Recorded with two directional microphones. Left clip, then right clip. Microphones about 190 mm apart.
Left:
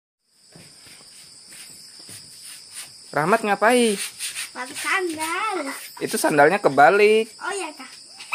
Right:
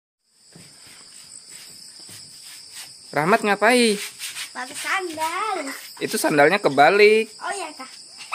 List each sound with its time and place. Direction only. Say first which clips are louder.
3.1 s speech: right 1 dB; 20° right (ahead or behind)